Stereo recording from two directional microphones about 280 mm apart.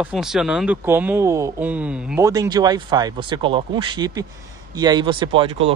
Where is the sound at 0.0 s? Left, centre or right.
Centre.